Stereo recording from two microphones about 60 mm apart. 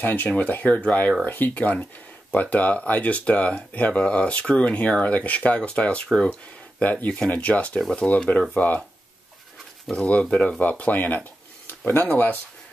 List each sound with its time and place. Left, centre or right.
0.0 s speech: left
9.8 s speech: centre